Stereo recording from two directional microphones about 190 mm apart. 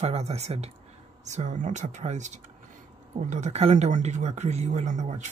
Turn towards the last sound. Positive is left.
turn(degrees=-40)  # may be behind; listen again after turning